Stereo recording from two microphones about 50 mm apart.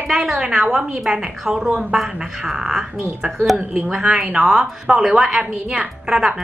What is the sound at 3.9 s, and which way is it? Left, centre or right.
A woman's voice, centre.